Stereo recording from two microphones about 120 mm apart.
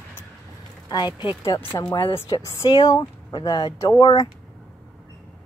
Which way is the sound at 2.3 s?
35° left (ahead or behind).